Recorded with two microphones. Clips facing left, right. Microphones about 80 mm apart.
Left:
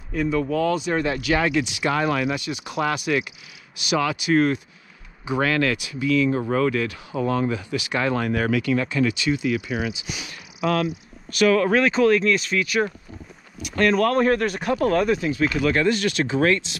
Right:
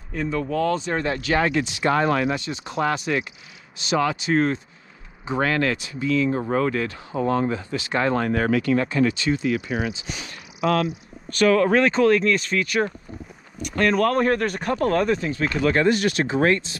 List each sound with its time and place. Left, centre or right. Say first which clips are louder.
0.1 s speech: left 2 dB; centre
0.7 s speech: left 1 dB; centre
0.9 s speech: even; right
9.9 s speech: even; centre
15.6 s speech: right 4 dB; right